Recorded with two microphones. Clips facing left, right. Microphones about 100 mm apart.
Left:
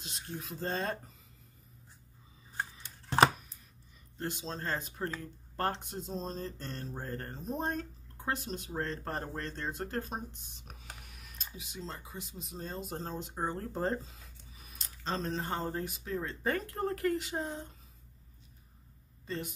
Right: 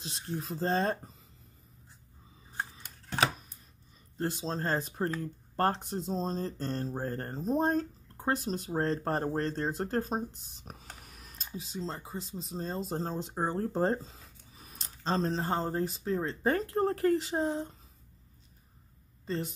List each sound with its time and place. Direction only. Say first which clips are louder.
0.0 s speech: right 5 dB; 35° right (ahead or behind)
4.2 s speech: right 5 dB; 35° right (ahead or behind)
19.2 s speech: right 4 dB; 35° right (ahead or behind)